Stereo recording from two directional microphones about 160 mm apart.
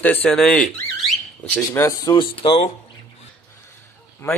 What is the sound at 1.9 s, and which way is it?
Speech, 25° left (ahead or behind).